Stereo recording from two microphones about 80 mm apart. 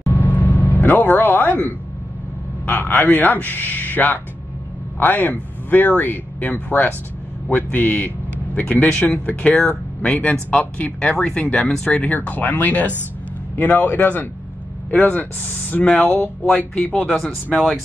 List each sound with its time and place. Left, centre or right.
0.1 s vehicle: left
2.6 s a man's voice: left; by 17.8 s centre